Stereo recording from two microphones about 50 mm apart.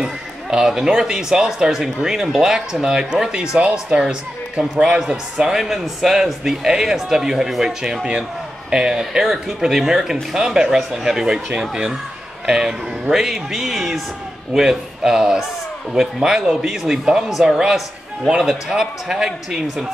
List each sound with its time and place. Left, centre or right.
0.0 s a man's voice: centre